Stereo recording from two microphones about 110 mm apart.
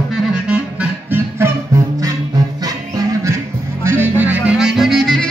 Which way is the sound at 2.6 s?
35° right (ahead or behind).